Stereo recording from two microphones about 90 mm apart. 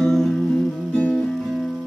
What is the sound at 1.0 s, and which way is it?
Music, 20° left (ahead or behind).